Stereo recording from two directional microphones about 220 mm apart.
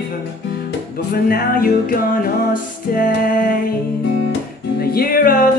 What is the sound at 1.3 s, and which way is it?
Music, 40° left (ahead or behind).